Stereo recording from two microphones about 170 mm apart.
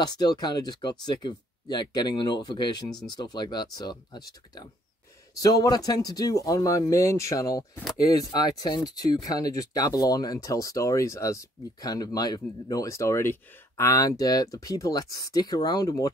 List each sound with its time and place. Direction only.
0.0 s speech: 25° left (ahead or behind)
5.3 s speech: 20° left (ahead or behind)